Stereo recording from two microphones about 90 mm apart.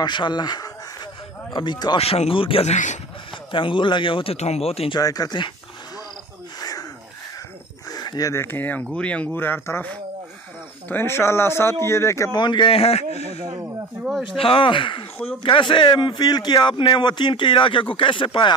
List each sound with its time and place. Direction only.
0.0 s a man's voice: 55° left (ahead or behind)
2.0 s speech: 85° left
3.5 s speech: 65° left (ahead or behind); by 4.9 s 90° left
4.9 s speech: 45° left (ahead or behind)
7.9 s a sound: 45° left (ahead or behind)
8.3 s speech: 25° left (ahead or behind)
10.9 s speech: 25° left (ahead or behind)
12.3 s a man's voice: 55° left (ahead or behind); by 12.8 s 75° left (ahead or behind)
14.4 s a man's voice: 80° left